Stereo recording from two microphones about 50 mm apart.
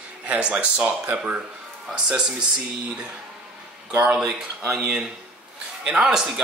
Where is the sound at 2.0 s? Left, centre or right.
Centre.